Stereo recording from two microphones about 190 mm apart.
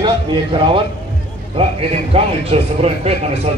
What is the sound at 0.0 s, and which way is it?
A man's voice, 25° right (ahead or behind).